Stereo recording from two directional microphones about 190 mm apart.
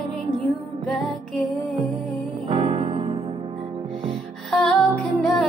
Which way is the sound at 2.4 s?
30° right (ahead or behind).